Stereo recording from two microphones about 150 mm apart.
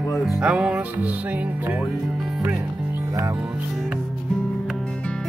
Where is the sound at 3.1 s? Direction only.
25° right (ahead or behind).